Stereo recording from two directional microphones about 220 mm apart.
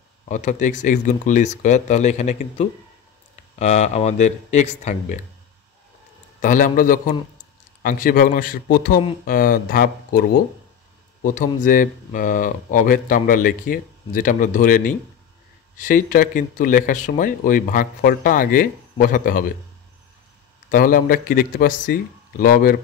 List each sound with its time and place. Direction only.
0.2 s speech: 35° left (ahead or behind)
6.4 s speech: 35° left (ahead or behind)
11.2 s speech: 40° left (ahead or behind)
20.7 s speech: 40° left (ahead or behind)